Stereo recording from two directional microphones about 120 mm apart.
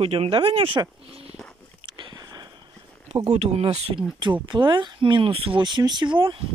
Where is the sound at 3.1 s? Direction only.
60° right (ahead or behind).